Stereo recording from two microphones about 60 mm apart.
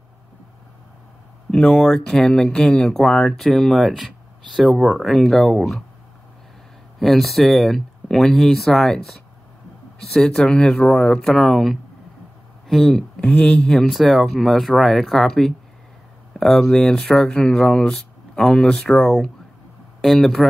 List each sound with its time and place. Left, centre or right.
1.5 s speech: centre
5.0 s speech: centre
7.0 s speech: centre
10.1 s speech: centre
13.2 s speech: left
13.8 s speech: centre